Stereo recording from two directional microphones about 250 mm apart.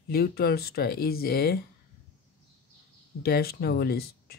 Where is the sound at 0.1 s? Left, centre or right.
Left.